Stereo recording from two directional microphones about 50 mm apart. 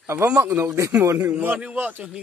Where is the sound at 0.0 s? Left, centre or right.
Right.